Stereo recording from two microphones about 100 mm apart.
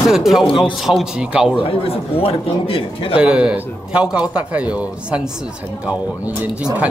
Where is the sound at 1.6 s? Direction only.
75° left (ahead or behind).